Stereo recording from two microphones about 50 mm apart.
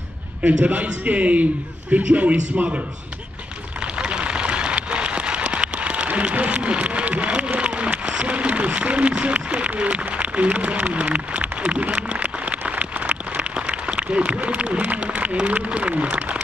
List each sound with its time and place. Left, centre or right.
0.4 s a man's voice: right
3.8 s rain on surface: centre